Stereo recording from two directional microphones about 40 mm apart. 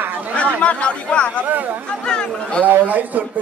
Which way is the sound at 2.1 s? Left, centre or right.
Left.